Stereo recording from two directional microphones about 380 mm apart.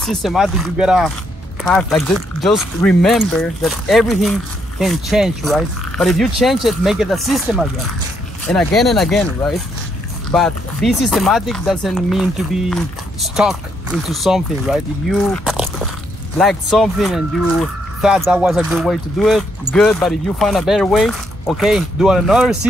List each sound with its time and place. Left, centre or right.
0.0 s speech: centre